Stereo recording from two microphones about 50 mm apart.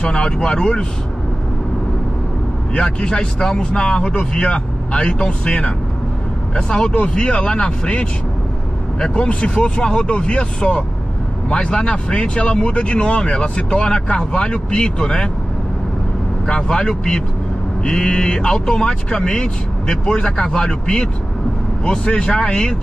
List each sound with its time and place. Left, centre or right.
0.0 s speech: left
2.7 s speech: left
3.7 s speech: left
16.4 s speech: centre